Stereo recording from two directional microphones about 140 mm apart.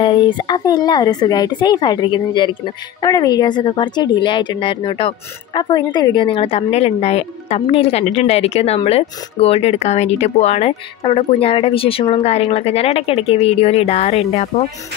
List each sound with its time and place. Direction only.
0.0 s speech: 35° left (ahead or behind); by 14.7 s 55° left (ahead or behind)